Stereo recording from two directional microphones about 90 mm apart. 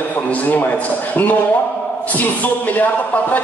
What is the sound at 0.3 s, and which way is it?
A man's voice, 20° left (ahead or behind).